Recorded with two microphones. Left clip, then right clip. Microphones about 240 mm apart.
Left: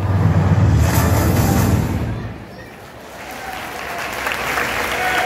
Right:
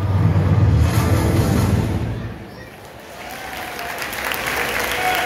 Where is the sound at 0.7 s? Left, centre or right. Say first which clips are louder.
Left 4 dB; left.